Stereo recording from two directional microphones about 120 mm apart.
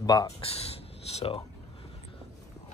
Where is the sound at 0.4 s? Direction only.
55° left (ahead or behind).